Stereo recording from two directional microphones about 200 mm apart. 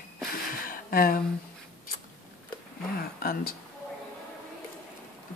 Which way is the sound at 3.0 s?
50° left (ahead or behind).